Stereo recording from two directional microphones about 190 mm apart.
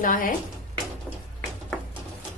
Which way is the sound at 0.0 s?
45° left (ahead or behind).